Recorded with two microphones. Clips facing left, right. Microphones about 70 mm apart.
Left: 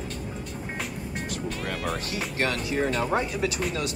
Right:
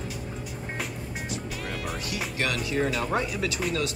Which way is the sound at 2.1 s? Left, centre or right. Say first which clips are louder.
Right 1 dB; left.